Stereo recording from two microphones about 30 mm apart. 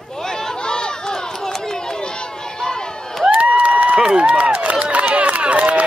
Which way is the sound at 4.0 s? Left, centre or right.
Right.